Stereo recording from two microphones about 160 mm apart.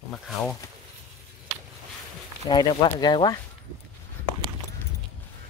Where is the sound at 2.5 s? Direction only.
25° left (ahead or behind).